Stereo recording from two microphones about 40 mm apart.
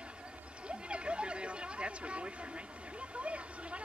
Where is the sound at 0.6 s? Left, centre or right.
Right.